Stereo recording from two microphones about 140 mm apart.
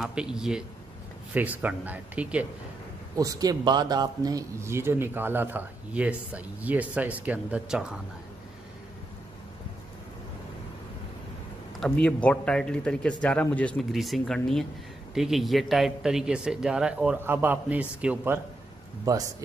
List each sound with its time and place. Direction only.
0.0 s a man's voice: 5° right (ahead or behind)
3.2 s speech: 25° right (ahead or behind); by 8.0 s 5° right (ahead or behind)
11.8 s a man's voice: 10° left (ahead or behind); by 18.4 s 10° right (ahead or behind)